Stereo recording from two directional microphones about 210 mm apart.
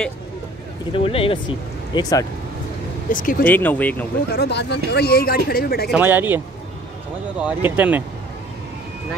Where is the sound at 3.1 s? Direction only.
40° left (ahead or behind).